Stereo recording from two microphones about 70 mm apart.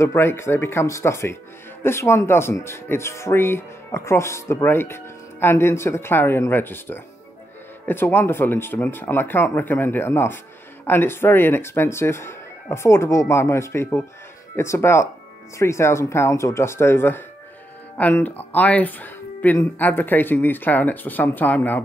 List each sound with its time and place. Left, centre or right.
0.0 s speech: left
18.2 s speech: left